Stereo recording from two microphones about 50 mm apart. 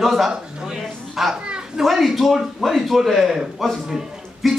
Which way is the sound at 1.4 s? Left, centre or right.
Centre.